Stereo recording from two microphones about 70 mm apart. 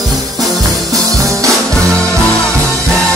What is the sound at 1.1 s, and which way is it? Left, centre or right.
Music, right.